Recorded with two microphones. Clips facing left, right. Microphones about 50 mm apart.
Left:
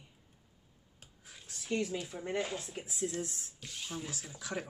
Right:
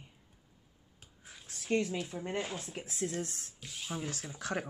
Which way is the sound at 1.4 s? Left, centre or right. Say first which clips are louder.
Right 4 dB; right.